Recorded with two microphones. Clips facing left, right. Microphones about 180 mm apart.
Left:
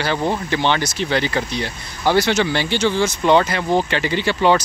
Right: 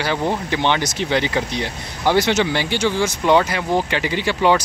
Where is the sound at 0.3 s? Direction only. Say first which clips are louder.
Even; 15° right (ahead or behind).